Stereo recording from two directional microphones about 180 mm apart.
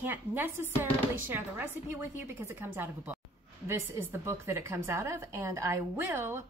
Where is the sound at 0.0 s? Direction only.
10° right (ahead or behind).